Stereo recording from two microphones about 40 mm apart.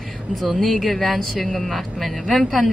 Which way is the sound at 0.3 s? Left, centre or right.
Centre.